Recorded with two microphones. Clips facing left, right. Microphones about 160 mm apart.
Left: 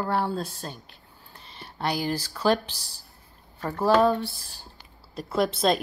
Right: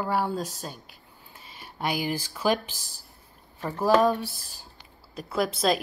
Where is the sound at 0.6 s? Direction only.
10° right (ahead or behind).